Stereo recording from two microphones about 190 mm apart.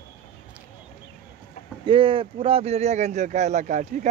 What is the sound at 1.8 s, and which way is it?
Speech, 25° right (ahead or behind).